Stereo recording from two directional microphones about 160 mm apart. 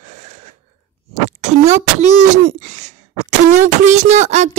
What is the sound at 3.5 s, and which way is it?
Music, 45° right (ahead or behind).